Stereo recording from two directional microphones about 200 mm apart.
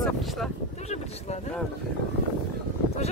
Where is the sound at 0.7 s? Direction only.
35° left (ahead or behind).